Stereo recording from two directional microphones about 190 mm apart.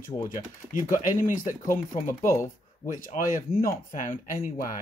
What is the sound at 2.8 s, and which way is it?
Speech, 40° left (ahead or behind).